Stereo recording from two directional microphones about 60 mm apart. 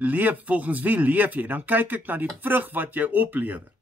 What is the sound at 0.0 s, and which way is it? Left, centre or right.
Speech, right.